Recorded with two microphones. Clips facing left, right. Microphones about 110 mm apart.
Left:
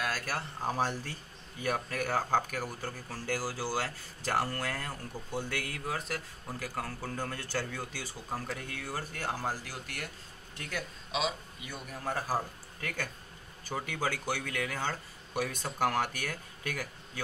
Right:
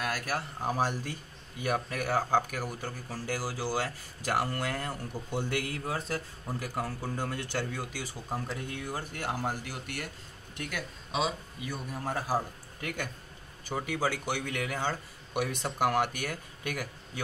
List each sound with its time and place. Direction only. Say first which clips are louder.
0.1 s speech: right 2 dB; 15° right (ahead or behind)
11.9 s speech: right 1 dB; 15° right (ahead or behind)